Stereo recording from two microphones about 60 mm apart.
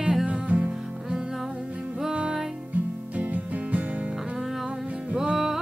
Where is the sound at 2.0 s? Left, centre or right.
Centre.